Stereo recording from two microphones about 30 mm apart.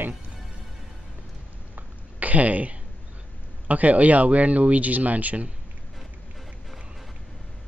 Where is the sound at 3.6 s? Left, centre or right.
Right.